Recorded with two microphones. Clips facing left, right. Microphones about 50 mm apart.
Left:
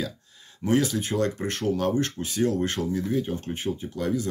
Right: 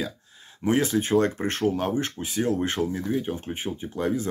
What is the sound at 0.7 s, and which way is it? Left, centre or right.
Speech, right.